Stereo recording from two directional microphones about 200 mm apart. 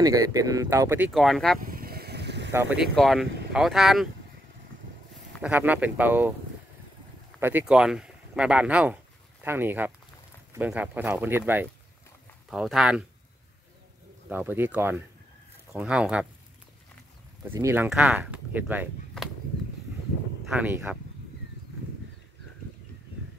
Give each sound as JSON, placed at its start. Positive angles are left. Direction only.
{"t": 0.0, "sound": "speech", "side_deg": -15}
{"t": 1.6, "sound": "vehicle", "side_deg": -45}
{"t": 2.5, "sound": "speech", "side_deg": -10}
{"t": 2.8, "sound": "speech", "side_deg": 0}
{"t": 5.4, "sound": "speech", "side_deg": -10}
{"t": 7.3, "sound": "speech", "side_deg": -10}
{"t": 14.3, "sound": "speech", "side_deg": -10}
{"t": 17.4, "sound": "speech", "side_deg": -15}
{"t": 20.5, "sound": "speech", "side_deg": -10}